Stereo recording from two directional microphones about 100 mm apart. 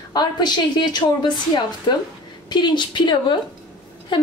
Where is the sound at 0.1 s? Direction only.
45° left (ahead or behind).